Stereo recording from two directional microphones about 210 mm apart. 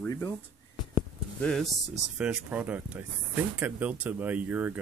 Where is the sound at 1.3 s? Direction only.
5° left (ahead or behind).